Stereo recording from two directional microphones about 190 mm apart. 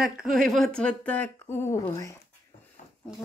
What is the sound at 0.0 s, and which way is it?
Speech, centre (ahead or behind).